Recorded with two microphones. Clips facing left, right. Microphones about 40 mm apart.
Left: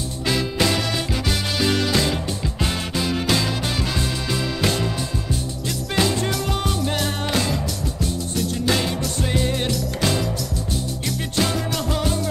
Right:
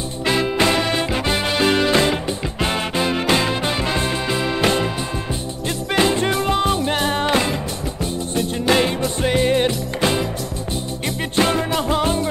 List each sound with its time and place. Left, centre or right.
0.2 s music: right
5.9 s music: right
11.3 s music: right